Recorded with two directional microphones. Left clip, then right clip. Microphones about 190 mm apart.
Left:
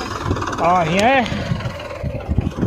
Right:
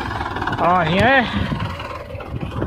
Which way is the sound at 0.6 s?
Centre (ahead or behind).